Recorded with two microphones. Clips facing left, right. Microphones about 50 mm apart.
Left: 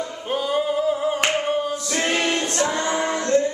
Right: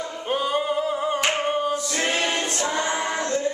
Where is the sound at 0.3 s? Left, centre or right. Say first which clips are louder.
Left 1 dB; centre.